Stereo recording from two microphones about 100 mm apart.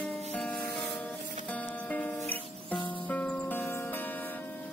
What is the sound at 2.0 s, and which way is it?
Music, 15° left (ahead or behind).